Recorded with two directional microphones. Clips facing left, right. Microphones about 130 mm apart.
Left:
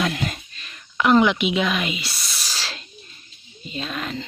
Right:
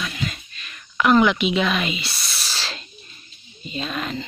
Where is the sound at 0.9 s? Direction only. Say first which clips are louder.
Even; 20° left (ahead or behind).